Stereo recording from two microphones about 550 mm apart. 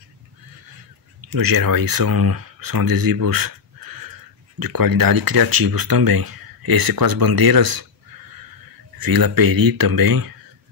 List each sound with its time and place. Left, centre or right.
1.2 s speech: right
8.9 s speech: right